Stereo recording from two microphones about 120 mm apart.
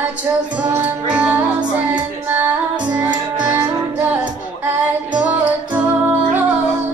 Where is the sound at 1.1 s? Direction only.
10° right (ahead or behind).